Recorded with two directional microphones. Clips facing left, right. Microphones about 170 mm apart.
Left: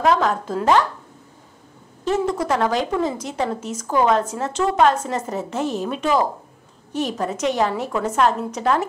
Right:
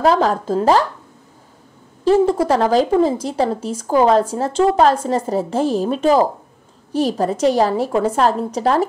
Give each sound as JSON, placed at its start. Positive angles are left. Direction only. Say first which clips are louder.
{"t": 0.0, "sound": "speech", "louder": "right 3 dB", "side_deg": -35}
{"t": 2.0, "sound": "speech", "louder": "right 7 dB", "side_deg": -30}